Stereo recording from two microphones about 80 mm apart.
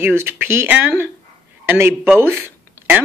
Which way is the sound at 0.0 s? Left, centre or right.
Right.